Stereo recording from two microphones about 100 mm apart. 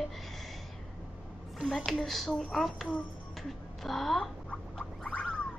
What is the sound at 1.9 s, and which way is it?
A woman's voice, centre (ahead or behind).